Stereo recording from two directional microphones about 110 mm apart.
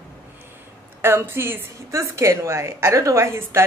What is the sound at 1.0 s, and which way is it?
A woman's voice, 20° right (ahead or behind).